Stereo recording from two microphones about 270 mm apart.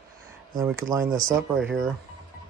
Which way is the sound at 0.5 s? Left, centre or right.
Centre.